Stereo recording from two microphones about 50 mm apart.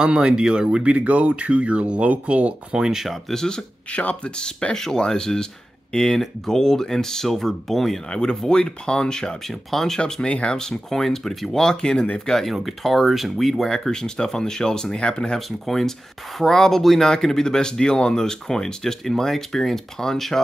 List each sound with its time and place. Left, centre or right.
0.0 s speech: right
2.7 s speech: centre
3.1 s speech: centre
3.4 s speech: centre
8.1 s speech: centre
9.5 s speech: centre
9.9 s speech: centre
10.6 s speech: centre
15.3 s speech: centre